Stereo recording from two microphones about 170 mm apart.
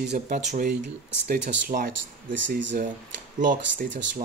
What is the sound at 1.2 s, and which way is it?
Speech, 60° right (ahead or behind).